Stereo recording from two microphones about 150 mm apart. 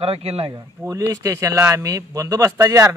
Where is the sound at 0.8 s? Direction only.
20° right (ahead or behind).